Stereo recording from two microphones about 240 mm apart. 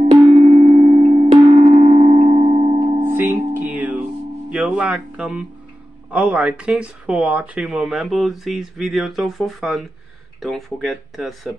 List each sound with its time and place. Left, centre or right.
0.0 s tubular bells: right
3.0 s music: centre
6.0 s speech: centre